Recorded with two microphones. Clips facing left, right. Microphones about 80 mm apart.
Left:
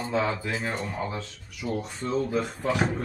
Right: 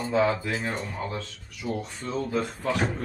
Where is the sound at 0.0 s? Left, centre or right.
Centre.